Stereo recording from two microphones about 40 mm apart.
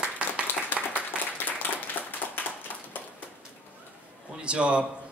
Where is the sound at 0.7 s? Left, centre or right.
Left.